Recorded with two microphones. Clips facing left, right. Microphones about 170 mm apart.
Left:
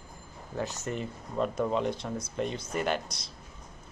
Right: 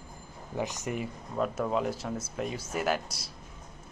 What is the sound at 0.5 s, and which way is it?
Speech, 15° right (ahead or behind).